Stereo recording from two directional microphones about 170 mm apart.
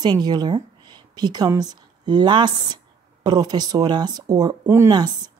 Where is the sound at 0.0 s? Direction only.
25° right (ahead or behind).